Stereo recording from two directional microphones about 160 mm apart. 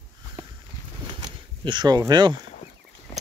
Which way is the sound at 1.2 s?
25° right (ahead or behind).